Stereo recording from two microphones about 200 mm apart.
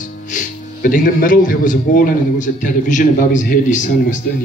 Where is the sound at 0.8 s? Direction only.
40° left (ahead or behind).